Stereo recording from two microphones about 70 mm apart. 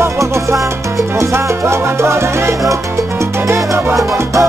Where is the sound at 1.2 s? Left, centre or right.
Right.